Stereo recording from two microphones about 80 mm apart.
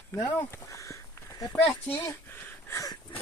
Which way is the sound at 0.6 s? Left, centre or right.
Left.